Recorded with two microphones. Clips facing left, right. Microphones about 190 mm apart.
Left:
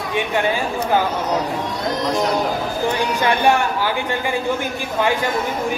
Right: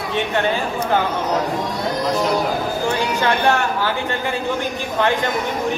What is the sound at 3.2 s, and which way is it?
Speech, 15° left (ahead or behind).